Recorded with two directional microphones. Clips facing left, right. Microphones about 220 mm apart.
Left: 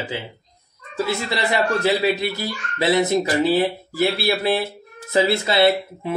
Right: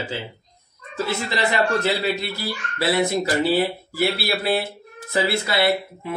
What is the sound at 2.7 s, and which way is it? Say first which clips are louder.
Speech: left 3 dB; 20° left (ahead or behind).